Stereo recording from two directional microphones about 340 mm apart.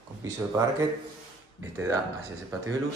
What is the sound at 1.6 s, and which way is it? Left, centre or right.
Speech, centre.